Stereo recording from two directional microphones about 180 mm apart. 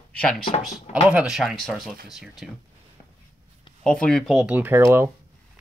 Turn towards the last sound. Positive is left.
turn(degrees=-15)  # may be behind; listen again after turning